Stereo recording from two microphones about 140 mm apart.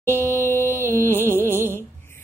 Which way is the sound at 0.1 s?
20° left (ahead or behind).